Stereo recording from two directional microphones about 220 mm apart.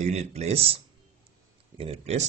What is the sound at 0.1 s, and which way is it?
Speech, 30° right (ahead or behind).